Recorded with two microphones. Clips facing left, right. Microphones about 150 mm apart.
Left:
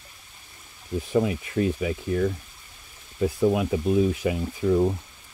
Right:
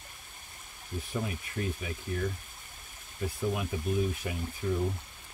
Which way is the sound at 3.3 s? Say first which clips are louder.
Left 10 dB; 90° left.